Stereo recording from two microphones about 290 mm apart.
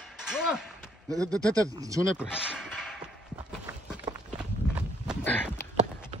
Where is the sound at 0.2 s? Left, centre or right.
Centre.